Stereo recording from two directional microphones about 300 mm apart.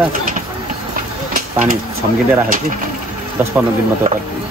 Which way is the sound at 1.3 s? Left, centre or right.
Right.